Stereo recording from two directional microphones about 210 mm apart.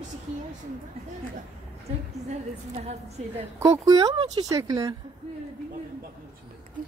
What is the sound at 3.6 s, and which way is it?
Speech, 15° right (ahead or behind).